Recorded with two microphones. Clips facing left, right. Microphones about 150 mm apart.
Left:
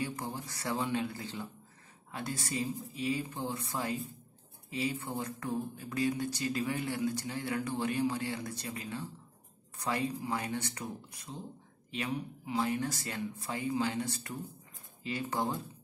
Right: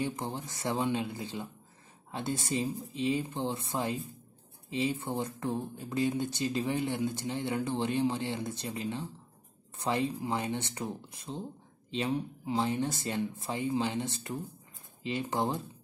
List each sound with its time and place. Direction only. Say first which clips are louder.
0.0 s speech: right 3 dB; 20° right (ahead or behind)